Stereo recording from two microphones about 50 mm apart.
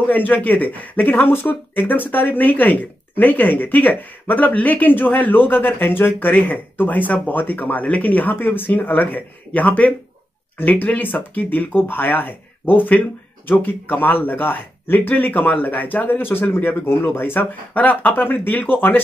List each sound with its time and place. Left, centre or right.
0.0 s speech: left